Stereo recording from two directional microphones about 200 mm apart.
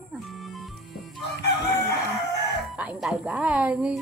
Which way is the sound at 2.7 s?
5° right (ahead or behind).